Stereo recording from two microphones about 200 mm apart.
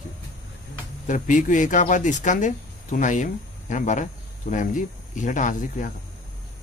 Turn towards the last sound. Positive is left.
turn(degrees=40)  # may be behind; listen again after turning